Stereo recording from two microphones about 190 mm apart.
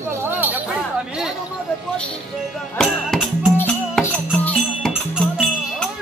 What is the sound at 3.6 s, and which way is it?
Music, 5° left (ahead or behind).